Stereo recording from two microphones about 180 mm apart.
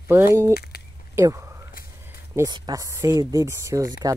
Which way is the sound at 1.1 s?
15° right (ahead or behind).